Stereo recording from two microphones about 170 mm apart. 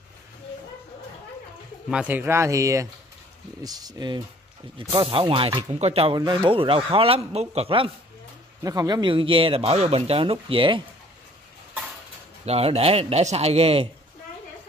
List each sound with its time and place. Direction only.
1.9 s speech: 10° right (ahead or behind); by 7.9 s 35° right (ahead or behind)
8.6 s speech: 25° right (ahead or behind)
12.4 s speech: 35° right (ahead or behind)